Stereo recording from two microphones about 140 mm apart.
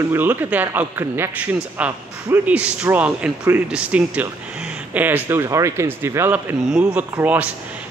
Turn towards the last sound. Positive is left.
turn(degrees=-10)  # may be behind; listen again after turning